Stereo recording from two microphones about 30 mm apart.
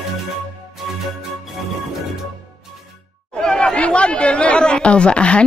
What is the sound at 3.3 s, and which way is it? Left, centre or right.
Chatter, left.